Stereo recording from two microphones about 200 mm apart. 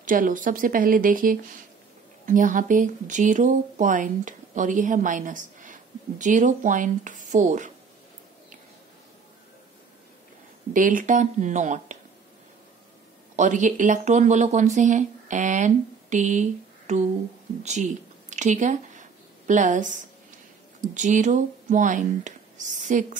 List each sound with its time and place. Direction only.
0.0 s speech: 45° right (ahead or behind)
10.7 s speech: 40° right (ahead or behind)
13.4 s speech: 40° right (ahead or behind)
17.6 s a sound: 35° right (ahead or behind)
20.9 s speech: 35° right (ahead or behind)